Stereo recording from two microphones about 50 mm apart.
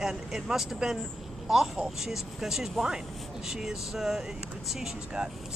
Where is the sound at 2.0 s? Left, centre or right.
Centre.